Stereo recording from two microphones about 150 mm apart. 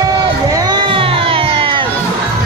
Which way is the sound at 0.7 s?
35° right (ahead or behind).